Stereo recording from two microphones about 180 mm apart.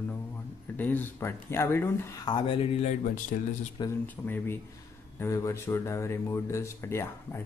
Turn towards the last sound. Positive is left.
turn(degrees=15)  # may be behind; listen again after turning